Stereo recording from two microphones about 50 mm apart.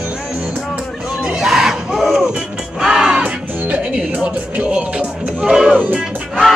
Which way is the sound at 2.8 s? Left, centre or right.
Centre.